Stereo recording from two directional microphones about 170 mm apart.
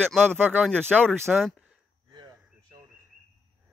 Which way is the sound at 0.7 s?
5° left (ahead or behind).